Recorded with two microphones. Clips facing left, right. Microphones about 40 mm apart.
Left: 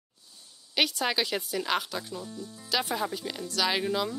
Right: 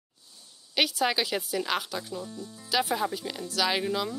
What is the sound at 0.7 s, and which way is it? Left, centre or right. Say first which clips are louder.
Speech: right 1 dB; centre.